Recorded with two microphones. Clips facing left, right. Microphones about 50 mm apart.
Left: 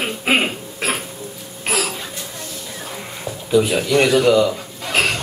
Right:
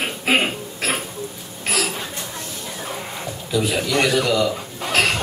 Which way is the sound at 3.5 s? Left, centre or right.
Left.